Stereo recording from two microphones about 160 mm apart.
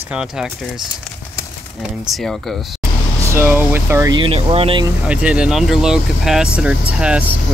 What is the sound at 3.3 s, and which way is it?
Speech, 15° right (ahead or behind).